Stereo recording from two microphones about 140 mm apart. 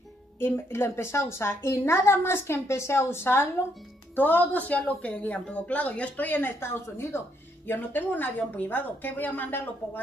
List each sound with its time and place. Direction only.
0.4 s a woman's voice: 20° left (ahead or behind)